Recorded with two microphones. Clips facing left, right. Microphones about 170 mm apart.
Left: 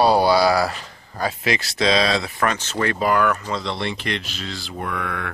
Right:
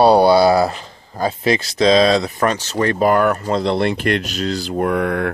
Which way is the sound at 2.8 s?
45° right (ahead or behind).